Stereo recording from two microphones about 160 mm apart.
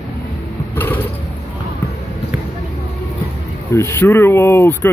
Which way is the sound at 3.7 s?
15° left (ahead or behind).